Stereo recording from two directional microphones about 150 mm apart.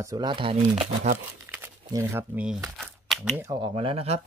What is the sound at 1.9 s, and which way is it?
Speech, 20° right (ahead or behind).